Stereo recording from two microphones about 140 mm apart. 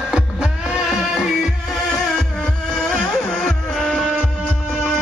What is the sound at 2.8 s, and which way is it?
Music, 5° left (ahead or behind).